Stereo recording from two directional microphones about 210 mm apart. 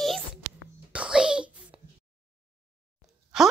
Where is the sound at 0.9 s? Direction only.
5° right (ahead or behind).